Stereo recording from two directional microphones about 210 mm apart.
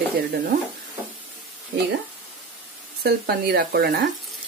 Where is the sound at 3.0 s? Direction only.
50° right (ahead or behind).